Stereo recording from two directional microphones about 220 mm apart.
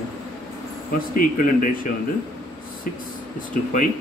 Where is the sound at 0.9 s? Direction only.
40° left (ahead or behind).